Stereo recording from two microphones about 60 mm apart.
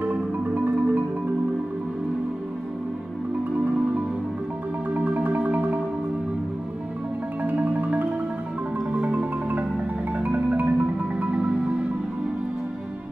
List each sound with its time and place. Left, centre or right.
0.1 s marimba: right
4.9 s marimba: right
7.4 s marimba: right